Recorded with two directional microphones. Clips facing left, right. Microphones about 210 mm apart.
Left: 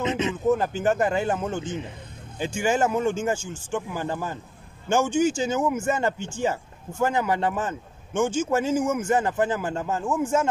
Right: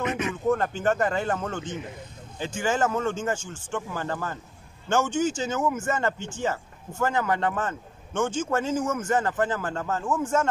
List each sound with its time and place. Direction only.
0.0 s speech: 20° left (ahead or behind)
0.5 s speech: 5° left (ahead or behind)